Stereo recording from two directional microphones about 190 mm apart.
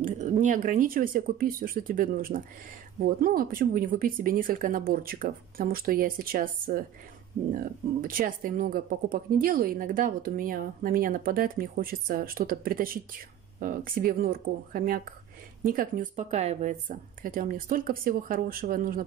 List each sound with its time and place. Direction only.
0.0 s speech: 40° right (ahead or behind)